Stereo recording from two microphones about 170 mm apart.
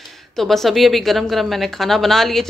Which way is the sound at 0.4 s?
Centre (ahead or behind).